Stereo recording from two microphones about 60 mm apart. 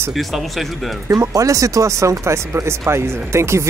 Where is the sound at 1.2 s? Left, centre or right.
Right.